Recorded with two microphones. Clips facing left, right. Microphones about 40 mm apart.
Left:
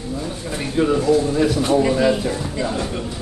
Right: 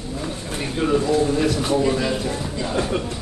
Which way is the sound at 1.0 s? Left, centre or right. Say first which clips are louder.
Left 2 dB; right.